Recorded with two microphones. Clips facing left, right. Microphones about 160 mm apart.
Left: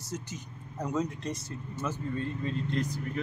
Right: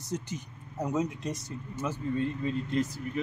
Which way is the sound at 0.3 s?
15° right (ahead or behind).